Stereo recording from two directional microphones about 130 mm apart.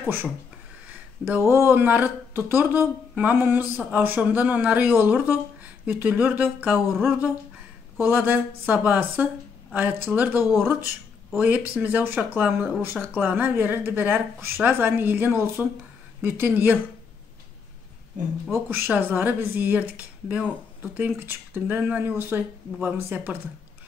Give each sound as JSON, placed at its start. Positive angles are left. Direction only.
{"t": 1.2, "sound": "speech", "side_deg": -20}
{"t": 8.0, "sound": "speech", "side_deg": -15}
{"t": 18.5, "sound": "speech", "side_deg": -15}